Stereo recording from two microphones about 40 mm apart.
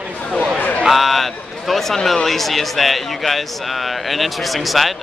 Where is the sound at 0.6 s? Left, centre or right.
Left.